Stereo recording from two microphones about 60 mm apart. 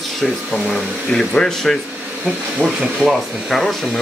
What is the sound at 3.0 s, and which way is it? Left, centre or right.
Speech, centre.